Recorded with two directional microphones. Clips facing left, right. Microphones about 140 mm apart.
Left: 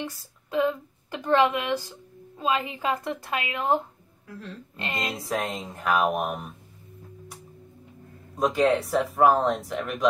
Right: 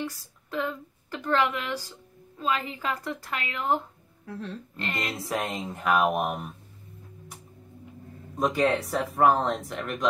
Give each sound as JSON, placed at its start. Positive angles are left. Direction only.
{"t": 0.0, "sound": "a woman's voice", "side_deg": 20}
{"t": 4.3, "sound": "speech", "side_deg": -25}
{"t": 4.7, "sound": "a woman's voice", "side_deg": 20}
{"t": 5.1, "sound": "speech", "side_deg": 0}
{"t": 8.4, "sound": "speech", "side_deg": 0}